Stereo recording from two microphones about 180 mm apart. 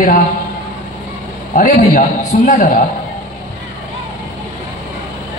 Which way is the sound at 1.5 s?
45° left (ahead or behind).